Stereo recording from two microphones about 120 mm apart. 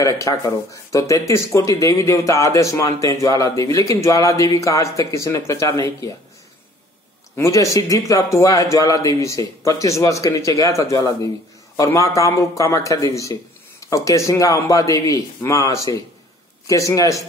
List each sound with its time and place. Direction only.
0.0 s speech: 25° left (ahead or behind)
7.3 s speech: 25° left (ahead or behind)